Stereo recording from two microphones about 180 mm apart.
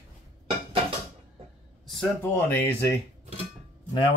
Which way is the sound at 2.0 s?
10° left (ahead or behind).